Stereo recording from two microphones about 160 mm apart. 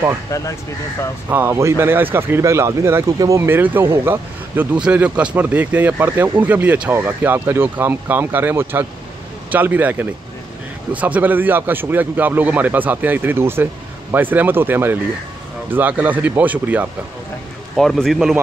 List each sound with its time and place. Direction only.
0.3 s speech: 20° left (ahead or behind)
1.3 s speech: 15° right (ahead or behind)
17.7 s a man's voice: centre (ahead or behind)